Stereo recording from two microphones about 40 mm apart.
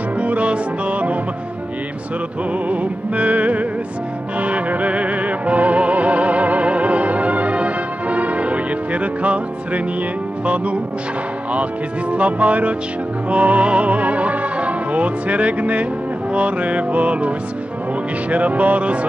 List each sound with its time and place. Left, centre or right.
0.2 s music: right
2.7 s music: right
10.4 s music: right
12.1 s music: right
13.3 s speech: right
16.3 s music: right
18.3 s music: right